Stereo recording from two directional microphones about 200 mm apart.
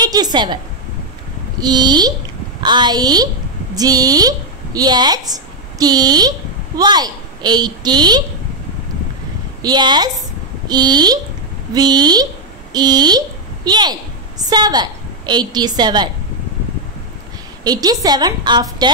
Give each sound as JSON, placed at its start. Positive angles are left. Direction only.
{"t": 0.0, "sound": "a woman's voice", "side_deg": -20}
{"t": 1.6, "sound": "a woman's voice", "side_deg": -20}
{"t": 9.6, "sound": "a woman's voice", "side_deg": -20}
{"t": 17.6, "sound": "a woman's voice", "side_deg": -20}